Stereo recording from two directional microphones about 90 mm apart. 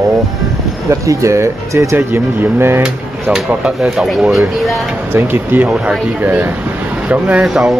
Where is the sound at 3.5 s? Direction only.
10° right (ahead or behind).